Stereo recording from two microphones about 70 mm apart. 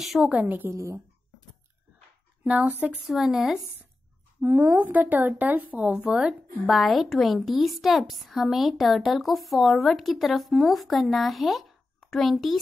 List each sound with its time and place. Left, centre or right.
0.0 s a woman's voice: centre
0.3 s speech: right
0.7 s a woman's voice: right
2.4 s a woman's voice: centre
4.4 s speech: right; by 6.3 s centre
6.7 s a woman's voice: centre